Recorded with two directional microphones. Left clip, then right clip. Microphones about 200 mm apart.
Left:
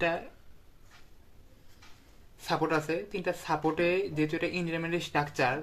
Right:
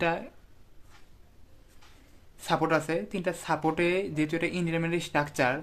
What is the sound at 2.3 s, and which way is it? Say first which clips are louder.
Speech: right 3 dB; 40° right (ahead or behind).